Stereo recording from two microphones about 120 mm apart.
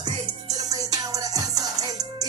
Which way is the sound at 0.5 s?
30° right (ahead or behind).